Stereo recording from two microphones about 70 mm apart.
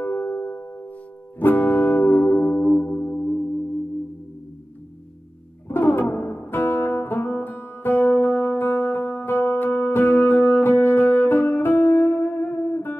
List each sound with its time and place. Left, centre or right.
0.0 s music: left
2.8 s music: left
5.7 s music: left